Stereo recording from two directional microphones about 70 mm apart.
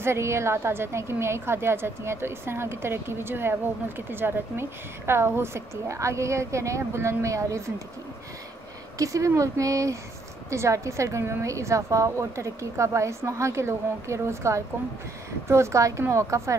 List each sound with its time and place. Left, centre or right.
0.0 s a woman's voice: right
8.9 s a woman's voice: right